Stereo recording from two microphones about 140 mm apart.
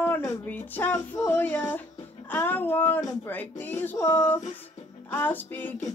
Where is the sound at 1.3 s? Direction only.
10° left (ahead or behind).